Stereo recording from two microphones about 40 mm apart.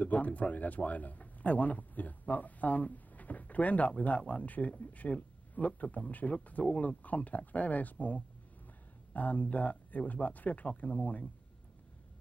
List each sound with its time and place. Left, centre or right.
0.0 s a man's voice: left